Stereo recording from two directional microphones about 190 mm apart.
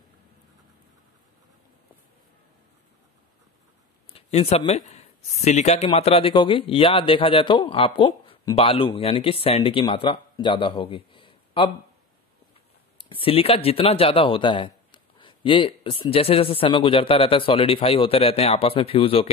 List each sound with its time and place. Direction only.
4.1 s speech: 30° left (ahead or behind)
13.1 s speech: 30° left (ahead or behind)